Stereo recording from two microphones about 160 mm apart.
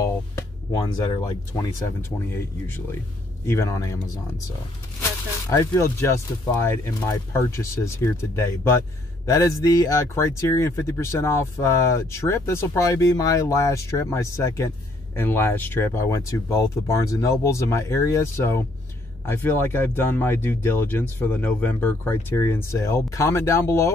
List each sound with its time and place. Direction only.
0.0 s music: 20° left (ahead or behind)
1.9 s speech: 15° left (ahead or behind)
5.5 s speech: 20° left (ahead or behind)